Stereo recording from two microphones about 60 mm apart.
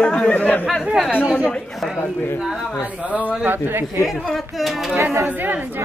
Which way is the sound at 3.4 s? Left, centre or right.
Right.